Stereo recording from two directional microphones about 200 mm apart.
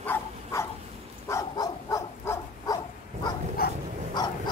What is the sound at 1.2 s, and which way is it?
Dog, 15° left (ahead or behind).